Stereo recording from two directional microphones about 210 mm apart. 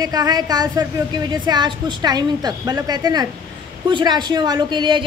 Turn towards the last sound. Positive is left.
turn(degrees=-20)  # may be behind; listen again after turning